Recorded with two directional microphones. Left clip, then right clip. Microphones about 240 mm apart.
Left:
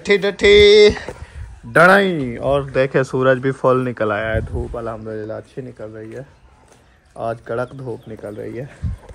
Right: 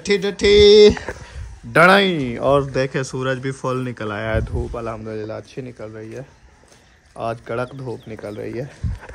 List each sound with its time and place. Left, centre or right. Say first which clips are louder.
0.0 s speech: left 3 dB; centre
0.7 s speech: even; right
1.7 s speech: left 1 dB; centre
2.1 s speech: even; right
2.4 s speech: right 2 dB; right
2.7 s speech: left 5 dB; centre
3.0 s speech: left 8 dB; centre
4.2 s speech: left 2 dB; right
4.5 s speech: left 1 dB; centre
8.4 s speech: right 2 dB; right